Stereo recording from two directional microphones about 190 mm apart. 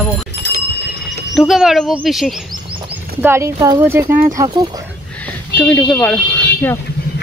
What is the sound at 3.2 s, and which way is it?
Speech, 15° right (ahead or behind).